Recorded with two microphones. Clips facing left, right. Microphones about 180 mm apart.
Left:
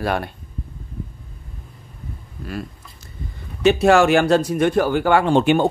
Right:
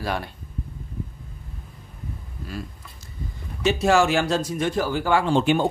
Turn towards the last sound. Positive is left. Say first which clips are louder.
# left 4 dB
turn(degrees=60)  # may be behind; listen again after turning